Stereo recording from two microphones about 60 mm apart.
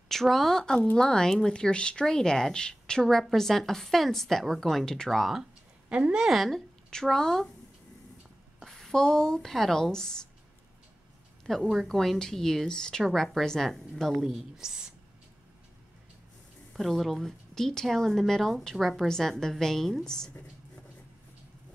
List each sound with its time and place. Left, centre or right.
0.1 s a woman's voice: centre
5.2 s speech: centre
5.9 s a woman's voice: centre
6.2 s speech: centre
8.5 s speech: centre
11.7 s a woman's voice: centre
16.7 s speech: centre